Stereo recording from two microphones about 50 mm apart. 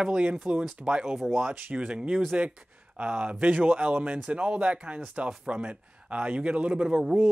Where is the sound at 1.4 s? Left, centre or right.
Right.